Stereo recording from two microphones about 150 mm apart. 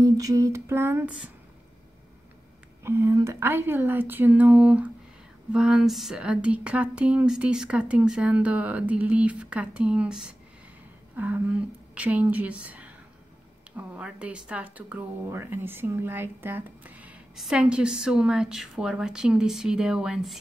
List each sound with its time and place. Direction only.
0.0 s speech: 20° right (ahead or behind)
2.8 s a woman's voice: 20° right (ahead or behind)